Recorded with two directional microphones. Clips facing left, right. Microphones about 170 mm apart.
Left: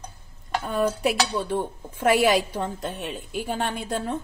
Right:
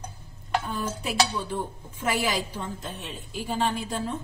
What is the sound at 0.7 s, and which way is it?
A woman's voice, 65° left (ahead or behind).